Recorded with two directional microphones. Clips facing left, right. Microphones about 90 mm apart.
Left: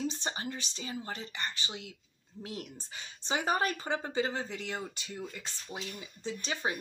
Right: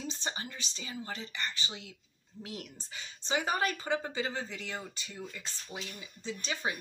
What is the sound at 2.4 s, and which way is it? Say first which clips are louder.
Speech: left 2 dB; 40° left (ahead or behind).